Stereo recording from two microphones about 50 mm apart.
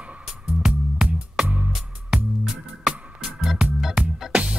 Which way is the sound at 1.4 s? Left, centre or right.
Right.